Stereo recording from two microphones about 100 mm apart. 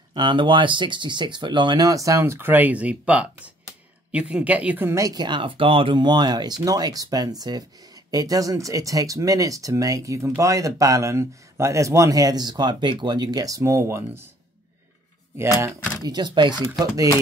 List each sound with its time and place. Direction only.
0.1 s speech: 50° right (ahead or behind); by 4.8 s 15° right (ahead or behind)
4.8 s a man's voice: 35° right (ahead or behind)
5.2 s a man's voice: 55° right (ahead or behind); by 14.2 s 25° right (ahead or behind)
15.3 s speech: 25° right (ahead or behind)
16.0 s speech: 45° right (ahead or behind)